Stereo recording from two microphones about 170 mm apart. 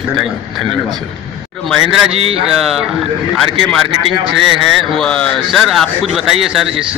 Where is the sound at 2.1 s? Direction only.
35° right (ahead or behind).